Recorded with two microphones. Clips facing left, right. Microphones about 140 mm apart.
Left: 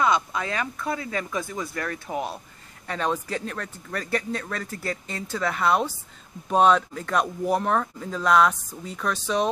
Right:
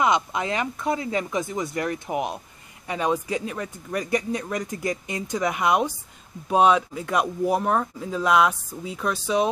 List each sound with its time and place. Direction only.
0.0 s a man's voice: 20° right (ahead or behind)